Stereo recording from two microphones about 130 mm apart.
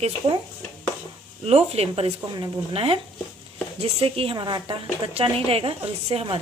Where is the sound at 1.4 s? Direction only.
50° right (ahead or behind).